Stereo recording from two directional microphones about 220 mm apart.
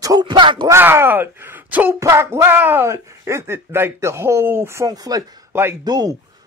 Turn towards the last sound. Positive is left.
turn(degrees=-15)  # may be behind; listen again after turning